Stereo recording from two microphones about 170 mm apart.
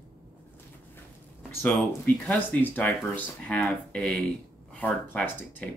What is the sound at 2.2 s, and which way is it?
Speech, 10° left (ahead or behind).